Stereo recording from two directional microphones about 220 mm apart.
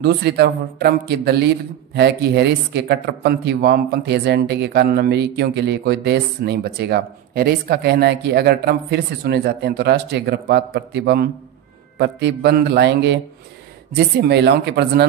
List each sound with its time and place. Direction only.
0.0 s speech: 50° right (ahead or behind)